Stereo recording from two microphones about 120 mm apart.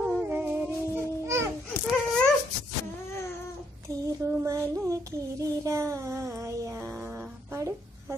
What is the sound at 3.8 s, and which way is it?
Child singing, 25° right (ahead or behind).